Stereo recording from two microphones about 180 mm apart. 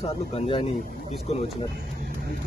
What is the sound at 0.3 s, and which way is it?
Speech, 30° left (ahead or behind).